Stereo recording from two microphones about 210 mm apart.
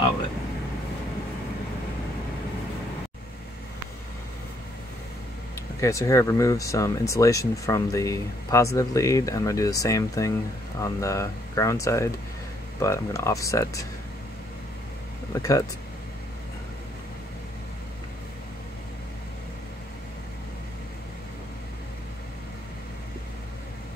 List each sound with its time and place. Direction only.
5.8 s speech: 15° left (ahead or behind)
15.3 s speech: 15° left (ahead or behind)